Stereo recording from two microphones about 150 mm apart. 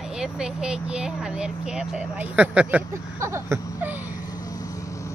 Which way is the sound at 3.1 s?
15° right (ahead or behind).